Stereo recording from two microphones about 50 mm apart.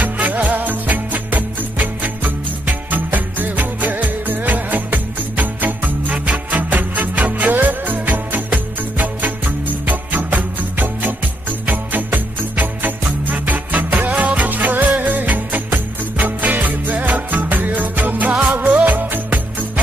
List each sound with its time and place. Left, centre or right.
0.0 s music: right
11.6 s jingle bell: right
15.0 s music: right